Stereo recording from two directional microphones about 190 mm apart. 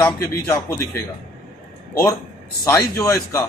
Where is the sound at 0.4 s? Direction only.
10° left (ahead or behind).